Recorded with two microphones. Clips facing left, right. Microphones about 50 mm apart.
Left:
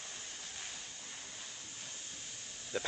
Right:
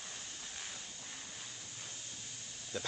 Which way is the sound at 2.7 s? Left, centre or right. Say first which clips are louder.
Left 3 dB; left.